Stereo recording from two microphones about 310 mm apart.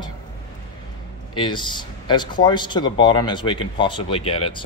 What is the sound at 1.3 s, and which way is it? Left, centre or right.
A man's voice, centre.